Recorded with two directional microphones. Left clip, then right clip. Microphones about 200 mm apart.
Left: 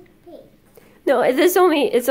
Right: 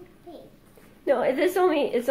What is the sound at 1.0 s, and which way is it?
A woman's voice, 45° left (ahead or behind).